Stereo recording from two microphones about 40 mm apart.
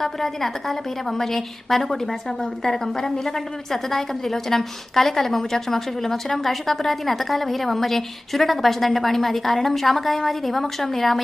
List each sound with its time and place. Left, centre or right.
0.0 s a woman's voice: centre